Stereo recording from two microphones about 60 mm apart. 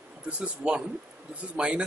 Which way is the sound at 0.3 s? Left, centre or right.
Centre.